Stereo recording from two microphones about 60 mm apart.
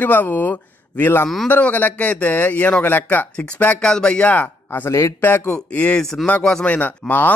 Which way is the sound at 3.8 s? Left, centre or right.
Centre.